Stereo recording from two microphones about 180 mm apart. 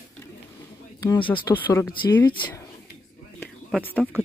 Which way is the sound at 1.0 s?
20° left (ahead or behind).